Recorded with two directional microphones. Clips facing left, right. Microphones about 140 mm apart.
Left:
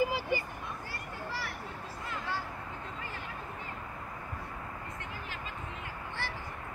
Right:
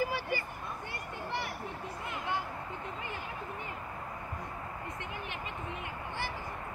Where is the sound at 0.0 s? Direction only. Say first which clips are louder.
Left 3 dB; 15° left (ahead or behind).